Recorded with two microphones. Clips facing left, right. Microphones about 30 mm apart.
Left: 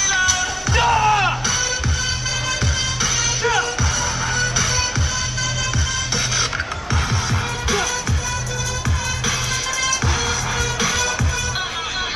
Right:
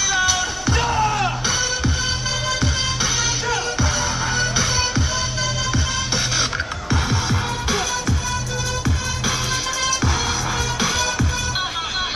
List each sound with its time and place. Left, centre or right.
0.1 s music: centre
0.7 s music: centre
4.4 s music: centre
6.9 s music: centre
10.8 s music: centre